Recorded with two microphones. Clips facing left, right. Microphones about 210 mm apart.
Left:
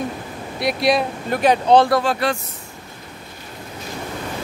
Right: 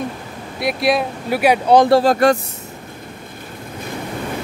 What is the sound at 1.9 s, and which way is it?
Speech, 30° right (ahead or behind).